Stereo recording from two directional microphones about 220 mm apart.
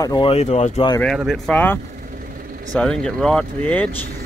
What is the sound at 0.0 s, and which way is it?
Speech, 20° left (ahead or behind).